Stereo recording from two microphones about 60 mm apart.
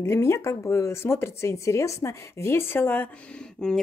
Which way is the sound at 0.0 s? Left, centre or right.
Left.